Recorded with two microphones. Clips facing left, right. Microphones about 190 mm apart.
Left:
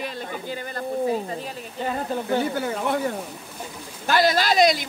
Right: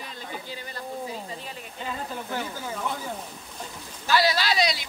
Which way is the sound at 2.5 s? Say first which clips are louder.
Left 8 dB; 70° left (ahead or behind).